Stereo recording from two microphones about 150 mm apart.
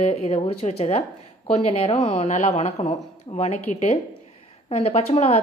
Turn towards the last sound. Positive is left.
turn(degrees=40)  # may be behind; listen again after turning